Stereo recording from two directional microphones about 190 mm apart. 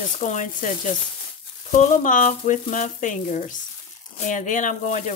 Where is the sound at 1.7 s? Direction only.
40° left (ahead or behind).